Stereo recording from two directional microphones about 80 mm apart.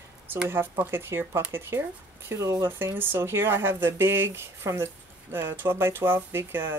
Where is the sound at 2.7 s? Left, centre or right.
Right.